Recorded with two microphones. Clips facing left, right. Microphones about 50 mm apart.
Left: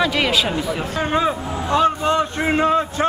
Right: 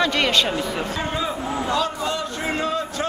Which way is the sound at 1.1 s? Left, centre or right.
Left.